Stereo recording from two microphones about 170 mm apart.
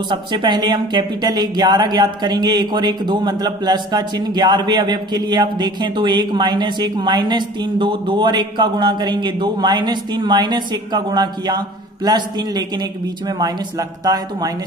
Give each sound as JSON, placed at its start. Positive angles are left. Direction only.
{"t": 0.1, "sound": "speech", "side_deg": -25}